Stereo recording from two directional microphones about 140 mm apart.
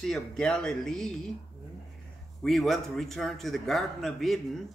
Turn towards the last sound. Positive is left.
turn(degrees=0)  # may be behind; listen again after turning